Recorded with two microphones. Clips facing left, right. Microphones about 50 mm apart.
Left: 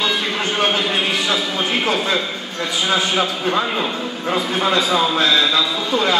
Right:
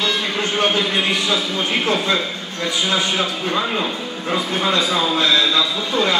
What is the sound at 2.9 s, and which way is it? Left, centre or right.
A man's voice, centre.